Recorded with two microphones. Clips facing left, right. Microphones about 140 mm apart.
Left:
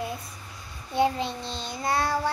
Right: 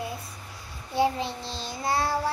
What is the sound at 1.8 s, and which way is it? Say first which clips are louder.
Child singing: even; 25° right (ahead or behind).